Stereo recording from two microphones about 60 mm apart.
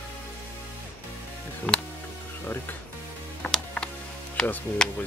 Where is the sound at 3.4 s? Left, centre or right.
Centre.